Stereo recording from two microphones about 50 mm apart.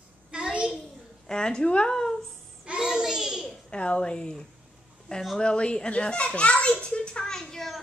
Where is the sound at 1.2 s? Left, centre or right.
Centre.